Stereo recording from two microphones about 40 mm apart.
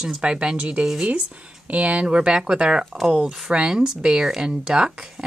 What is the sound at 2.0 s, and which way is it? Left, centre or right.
Speech, right.